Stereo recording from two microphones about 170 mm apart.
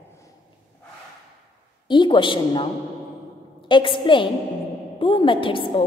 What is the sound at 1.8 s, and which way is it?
Speech, 25° left (ahead or behind).